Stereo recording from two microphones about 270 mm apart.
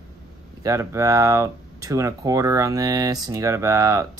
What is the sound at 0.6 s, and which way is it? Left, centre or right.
Speech, centre.